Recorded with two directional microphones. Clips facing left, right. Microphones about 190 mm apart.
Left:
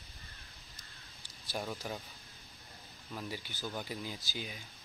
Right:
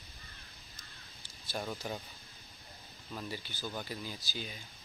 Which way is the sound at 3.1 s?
5° left (ahead or behind).